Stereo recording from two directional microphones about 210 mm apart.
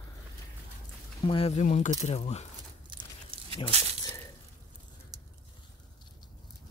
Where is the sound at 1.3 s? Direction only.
25° left (ahead or behind).